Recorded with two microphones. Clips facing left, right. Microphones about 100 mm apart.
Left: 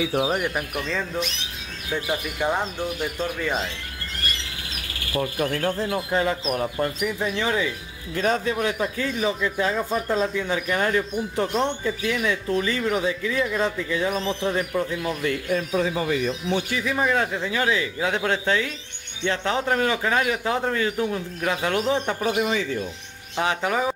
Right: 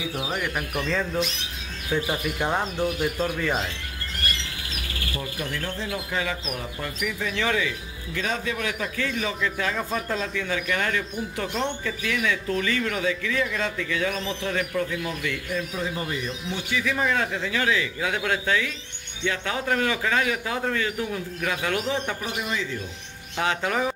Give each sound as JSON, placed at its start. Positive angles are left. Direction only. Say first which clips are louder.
{"t": 0.6, "sound": "speech", "louder": "right 1 dB", "side_deg": 0}
{"t": 2.5, "sound": "speech", "louder": "right 1 dB", "side_deg": 0}
{"t": 5.1, "sound": "speech", "louder": "left 9 dB", "side_deg": 50}
{"t": 7.1, "sound": "speech", "louder": "left 2 dB", "side_deg": 25}
{"t": 8.1, "sound": "speech", "louder": "left 5 dB", "side_deg": 40}
{"t": 15.7, "sound": "speech", "louder": "left 6 dB", "side_deg": 90}
{"t": 16.8, "sound": "speech", "louder": "even", "side_deg": 15}
{"t": 22.4, "sound": "speech", "louder": "left 6 dB", "side_deg": 70}
{"t": 23.3, "sound": "speech", "louder": "left 2 dB", "side_deg": 20}